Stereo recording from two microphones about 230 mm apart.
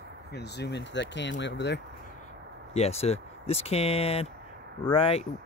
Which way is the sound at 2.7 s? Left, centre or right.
Left.